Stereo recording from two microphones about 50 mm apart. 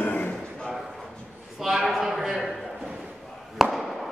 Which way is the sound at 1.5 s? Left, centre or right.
Centre.